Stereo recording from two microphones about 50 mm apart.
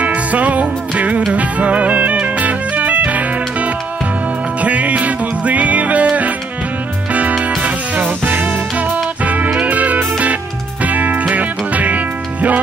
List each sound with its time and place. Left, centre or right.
0.0 s music: right
7.1 s music: right